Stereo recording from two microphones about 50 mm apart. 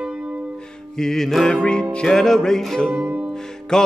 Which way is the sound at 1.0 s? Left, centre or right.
Centre.